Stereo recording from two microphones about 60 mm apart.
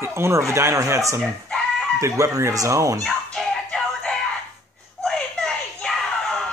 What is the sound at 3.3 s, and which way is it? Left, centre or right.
Music, centre.